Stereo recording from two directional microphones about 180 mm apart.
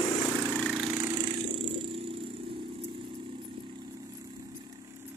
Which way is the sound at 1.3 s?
30° right (ahead or behind).